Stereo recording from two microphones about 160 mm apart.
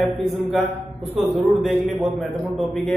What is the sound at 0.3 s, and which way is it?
A man's voice, centre (ahead or behind).